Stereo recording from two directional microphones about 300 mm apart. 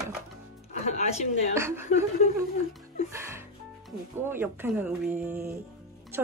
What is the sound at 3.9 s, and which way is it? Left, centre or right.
Speech, centre.